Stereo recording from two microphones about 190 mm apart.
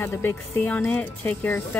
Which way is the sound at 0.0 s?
15° left (ahead or behind).